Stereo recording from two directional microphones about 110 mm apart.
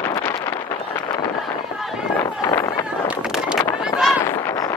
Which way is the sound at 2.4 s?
30° left (ahead or behind).